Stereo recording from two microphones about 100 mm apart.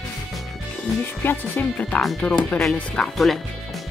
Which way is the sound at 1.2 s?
20° left (ahead or behind).